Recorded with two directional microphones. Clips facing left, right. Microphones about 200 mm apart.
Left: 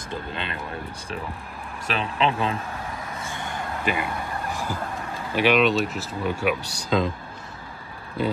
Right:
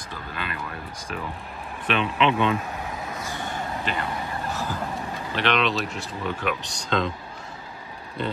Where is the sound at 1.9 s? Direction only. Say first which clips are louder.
Right 2 dB; 35° left (ahead or behind).